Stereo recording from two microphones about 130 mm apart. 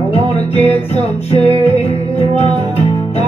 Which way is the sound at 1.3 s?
55° left (ahead or behind).